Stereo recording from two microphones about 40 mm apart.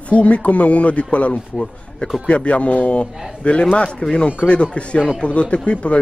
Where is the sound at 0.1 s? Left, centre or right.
Left.